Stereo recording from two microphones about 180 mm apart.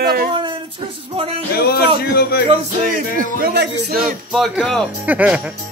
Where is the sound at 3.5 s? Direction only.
60° right (ahead or behind).